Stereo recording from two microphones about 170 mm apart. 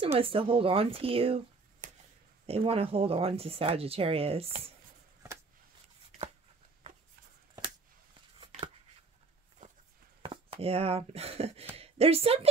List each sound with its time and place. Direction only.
0.0 s speech: 35° right (ahead or behind)
2.4 s speech: 35° right (ahead or behind)
10.2 s speech: 30° right (ahead or behind)